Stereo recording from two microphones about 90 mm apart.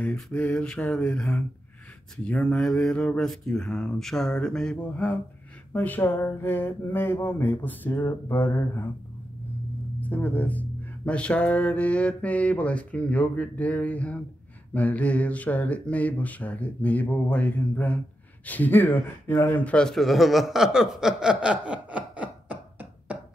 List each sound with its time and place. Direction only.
0.0 s speech: 20° left (ahead or behind)
5.7 s a sound: 20° left (ahead or behind)
9.9 s speech: 15° left (ahead or behind)
19.6 s speech: 10° left (ahead or behind); by 23.1 s 15° right (ahead or behind)